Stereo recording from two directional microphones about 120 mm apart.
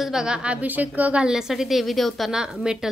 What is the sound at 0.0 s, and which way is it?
A woman's voice, 5° right (ahead or behind).